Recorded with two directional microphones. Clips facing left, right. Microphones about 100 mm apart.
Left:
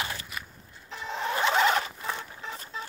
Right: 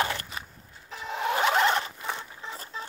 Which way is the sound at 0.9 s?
10° right (ahead or behind).